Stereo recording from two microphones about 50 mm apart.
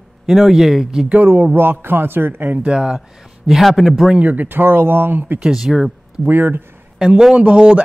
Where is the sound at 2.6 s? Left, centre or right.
Centre.